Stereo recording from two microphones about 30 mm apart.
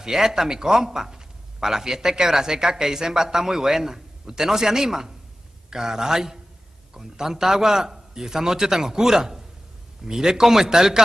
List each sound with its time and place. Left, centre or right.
0.0 s a man's voice: centre